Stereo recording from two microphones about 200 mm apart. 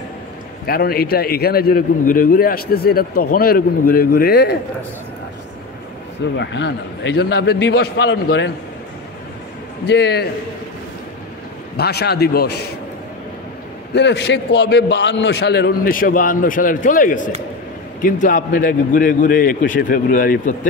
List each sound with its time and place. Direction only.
0.7 s a man's voice: 50° left (ahead or behind)
6.3 s a man's voice: 60° left (ahead or behind)
9.8 s a man's voice: 55° left (ahead or behind)
11.7 s a man's voice: 55° left (ahead or behind)
13.9 s a man's voice: 60° left (ahead or behind); by 20.5 s 45° left (ahead or behind)